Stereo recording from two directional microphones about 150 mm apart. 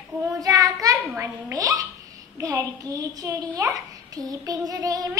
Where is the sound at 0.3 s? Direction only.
20° right (ahead or behind).